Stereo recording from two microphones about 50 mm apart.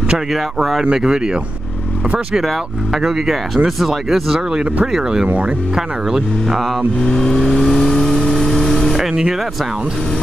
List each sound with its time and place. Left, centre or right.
0.3 s speech: centre
0.9 s speech: centre
2.4 s speech: centre
7.1 s vehicle: centre
9.1 s speech: centre